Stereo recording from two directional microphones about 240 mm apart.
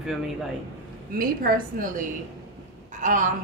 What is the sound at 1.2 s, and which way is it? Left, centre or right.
Speech, right.